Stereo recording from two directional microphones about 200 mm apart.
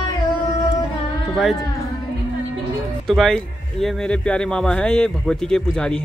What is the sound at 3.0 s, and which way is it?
A man's voice, centre (ahead or behind).